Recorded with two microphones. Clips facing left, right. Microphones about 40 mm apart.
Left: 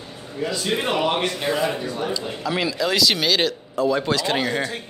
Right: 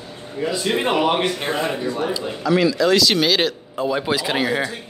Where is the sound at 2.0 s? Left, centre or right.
Centre.